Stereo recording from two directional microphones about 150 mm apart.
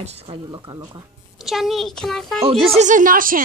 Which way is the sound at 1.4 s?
Centre (ahead or behind).